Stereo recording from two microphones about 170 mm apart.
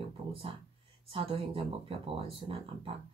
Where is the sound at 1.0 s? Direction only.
30° right (ahead or behind).